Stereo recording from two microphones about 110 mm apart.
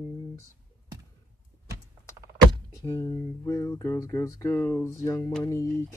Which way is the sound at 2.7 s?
30° left (ahead or behind).